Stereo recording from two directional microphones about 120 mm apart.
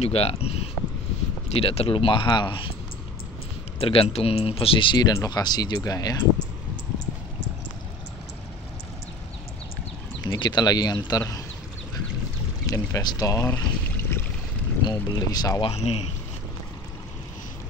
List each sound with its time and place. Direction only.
0.0 s speech: 55° left (ahead or behind)
3.8 s speech: 55° left (ahead or behind); by 6.2 s 30° left (ahead or behind)
10.2 s speech: 35° left (ahead or behind)
12.6 s speech: 25° left (ahead or behind)
13.5 s boat: 15° left (ahead or behind)
14.9 s speech: 35° left (ahead or behind)
15.6 s speech: 55° left (ahead or behind)